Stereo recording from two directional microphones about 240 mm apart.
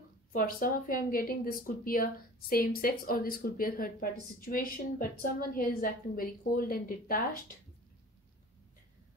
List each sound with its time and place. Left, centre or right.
0.3 s speech: left